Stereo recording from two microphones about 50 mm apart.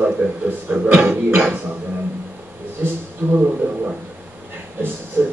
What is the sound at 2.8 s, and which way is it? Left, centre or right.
Speech, right.